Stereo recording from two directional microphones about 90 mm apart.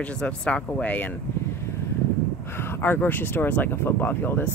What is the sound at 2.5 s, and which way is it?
Speech, 25° left (ahead or behind).